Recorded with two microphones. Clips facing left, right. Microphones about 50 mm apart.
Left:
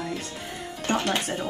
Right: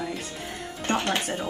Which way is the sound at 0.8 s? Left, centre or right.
Right.